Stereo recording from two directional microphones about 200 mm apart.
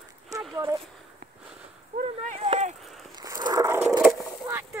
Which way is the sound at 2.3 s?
35° right (ahead or behind).